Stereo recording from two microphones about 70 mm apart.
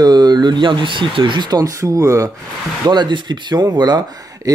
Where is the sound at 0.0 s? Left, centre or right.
Right.